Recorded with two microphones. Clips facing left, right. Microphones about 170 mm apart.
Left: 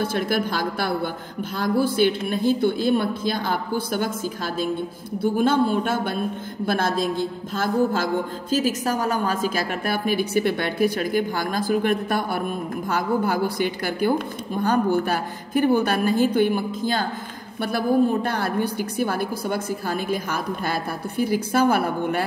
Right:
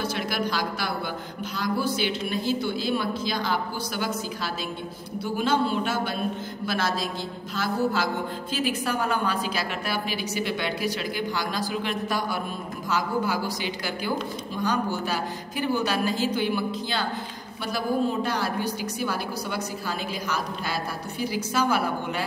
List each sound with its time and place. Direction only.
0.0 s a woman's voice: 50° left (ahead or behind)
5.2 s a woman's voice: 50° left (ahead or behind)